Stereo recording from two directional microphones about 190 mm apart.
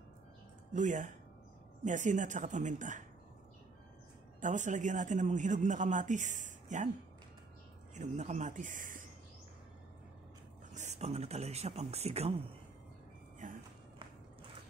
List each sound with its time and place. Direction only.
0.7 s speech: 40° right (ahead or behind)
4.4 s speech: 40° right (ahead or behind)
7.9 s speech: 40° right (ahead or behind)
10.7 s speech: 40° right (ahead or behind)
13.4 s a sound: 40° right (ahead or behind)